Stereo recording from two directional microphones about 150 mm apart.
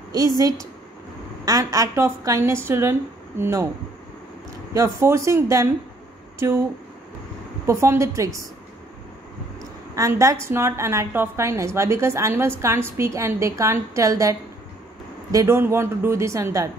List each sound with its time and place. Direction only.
0.4 s a woman's voice: 20° right (ahead or behind)
4.7 s a woman's voice: 20° right (ahead or behind)
7.6 s a woman's voice: 20° right (ahead or behind)
9.6 s a woman's voice: 20° right (ahead or behind)
15.3 s a woman's voice: 15° right (ahead or behind)